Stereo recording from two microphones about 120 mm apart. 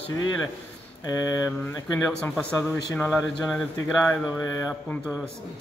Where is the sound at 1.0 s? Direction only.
30° left (ahead or behind).